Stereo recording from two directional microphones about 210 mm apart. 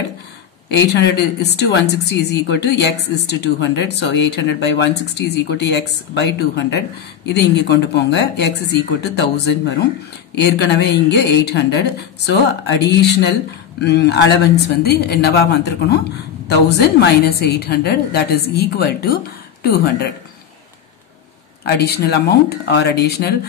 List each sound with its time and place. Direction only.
0.7 s a woman's voice: 55° left (ahead or behind)
21.6 s a woman's voice: 50° left (ahead or behind)